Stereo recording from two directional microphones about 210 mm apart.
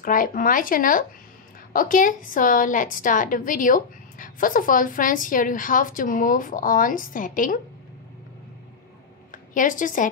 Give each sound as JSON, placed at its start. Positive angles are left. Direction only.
{"t": 0.0, "sound": "a woman's voice", "side_deg": 40}
{"t": 9.5, "sound": "a woman's voice", "side_deg": 40}